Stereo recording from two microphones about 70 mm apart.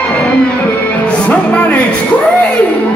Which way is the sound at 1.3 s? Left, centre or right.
Centre.